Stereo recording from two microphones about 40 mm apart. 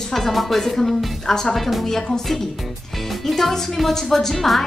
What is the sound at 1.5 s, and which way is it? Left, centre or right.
Speech, centre.